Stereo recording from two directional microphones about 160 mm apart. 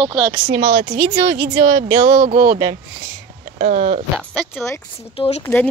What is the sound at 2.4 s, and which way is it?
Speech, 55° right (ahead or behind).